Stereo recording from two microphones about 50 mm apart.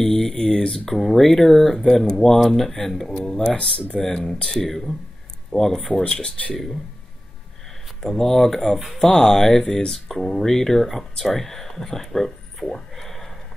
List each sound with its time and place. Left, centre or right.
0.0 s speech: centre
3.5 s speech: left
4.0 s speech: centre
8.0 s speech: centre
9.1 s speech: centre